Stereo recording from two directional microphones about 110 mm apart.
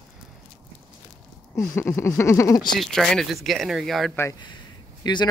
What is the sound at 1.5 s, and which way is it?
Speech, 20° left (ahead or behind).